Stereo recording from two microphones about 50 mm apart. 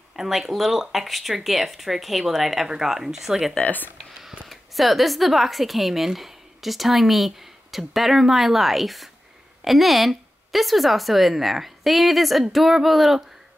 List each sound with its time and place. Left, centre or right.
0.1 s speech: centre
3.6 s speech: left
4.2 s speech: centre